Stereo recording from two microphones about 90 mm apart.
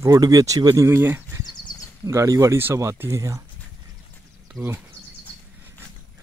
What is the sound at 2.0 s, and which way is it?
Speech, 35° right (ahead or behind).